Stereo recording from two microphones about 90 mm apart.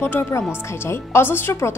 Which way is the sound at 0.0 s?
25° left (ahead or behind).